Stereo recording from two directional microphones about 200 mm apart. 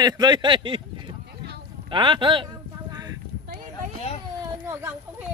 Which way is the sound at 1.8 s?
25° right (ahead or behind).